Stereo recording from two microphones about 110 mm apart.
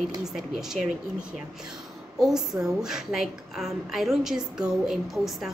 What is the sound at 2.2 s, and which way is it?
A woman's voice, 5° right (ahead or behind).